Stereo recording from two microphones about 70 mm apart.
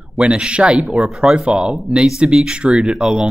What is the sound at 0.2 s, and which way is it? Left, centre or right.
Speech, centre.